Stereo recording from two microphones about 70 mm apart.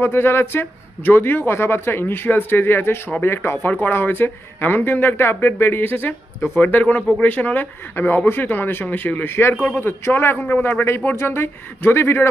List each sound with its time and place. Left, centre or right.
0.0 s a man's voice: left